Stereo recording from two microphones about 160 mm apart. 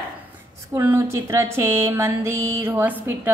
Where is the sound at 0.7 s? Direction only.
15° right (ahead or behind).